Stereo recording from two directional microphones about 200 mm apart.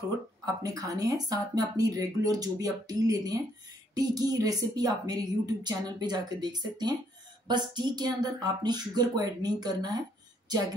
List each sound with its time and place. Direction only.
0.6 s a woman's voice: 15° right (ahead or behind)